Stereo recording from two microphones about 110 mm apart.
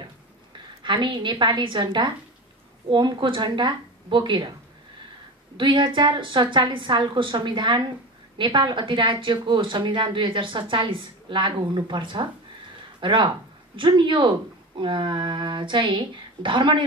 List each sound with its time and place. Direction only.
0.8 s speech: 45° right (ahead or behind)
5.6 s speech: 45° right (ahead or behind)